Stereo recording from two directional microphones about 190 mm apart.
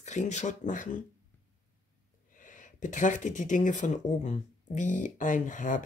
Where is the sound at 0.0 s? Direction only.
40° left (ahead or behind).